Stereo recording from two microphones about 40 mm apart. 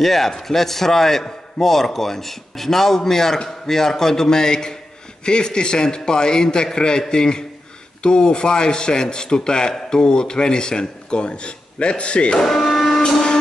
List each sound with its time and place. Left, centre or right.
0.0 s a man's voice: centre; by 12.4 s left
12.4 s printer: centre